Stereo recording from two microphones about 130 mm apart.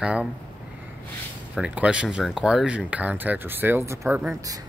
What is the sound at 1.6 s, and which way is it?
Speech, 10° right (ahead or behind).